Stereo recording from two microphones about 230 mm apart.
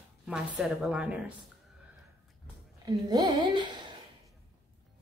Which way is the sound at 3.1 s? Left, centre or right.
Centre.